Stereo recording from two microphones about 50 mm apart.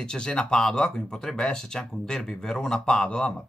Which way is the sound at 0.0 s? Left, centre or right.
Centre.